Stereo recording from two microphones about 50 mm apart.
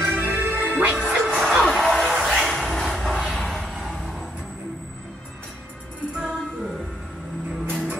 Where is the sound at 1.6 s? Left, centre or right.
Centre.